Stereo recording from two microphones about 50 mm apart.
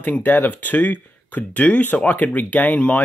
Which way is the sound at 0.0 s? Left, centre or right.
Left.